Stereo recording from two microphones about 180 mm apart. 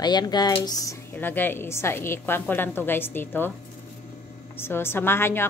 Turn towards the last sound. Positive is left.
turn(degrees=15)  # may be behind; listen again after turning